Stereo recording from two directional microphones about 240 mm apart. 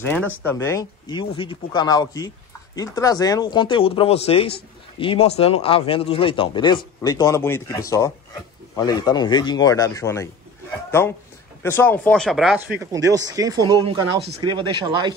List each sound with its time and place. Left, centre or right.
0.0 s a man's voice: centre